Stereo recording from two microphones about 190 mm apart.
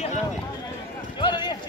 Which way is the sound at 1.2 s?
25° left (ahead or behind).